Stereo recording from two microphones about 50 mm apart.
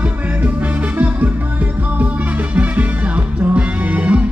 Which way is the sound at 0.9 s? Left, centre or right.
Right.